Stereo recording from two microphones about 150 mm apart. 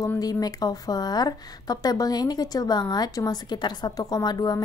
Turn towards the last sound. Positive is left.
turn(degrees=25)  # may be behind; listen again after turning